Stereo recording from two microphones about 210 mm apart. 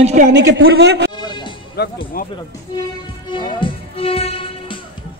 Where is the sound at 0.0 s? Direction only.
35° right (ahead or behind).